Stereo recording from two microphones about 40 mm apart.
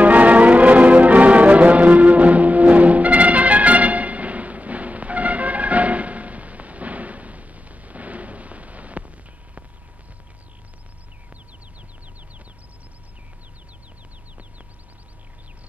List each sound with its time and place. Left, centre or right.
0.0 s music: right